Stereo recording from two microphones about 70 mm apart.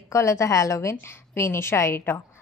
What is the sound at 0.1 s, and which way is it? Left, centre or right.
A woman's voice, left.